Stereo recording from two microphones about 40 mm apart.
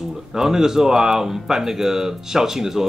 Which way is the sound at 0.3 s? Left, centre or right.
Centre.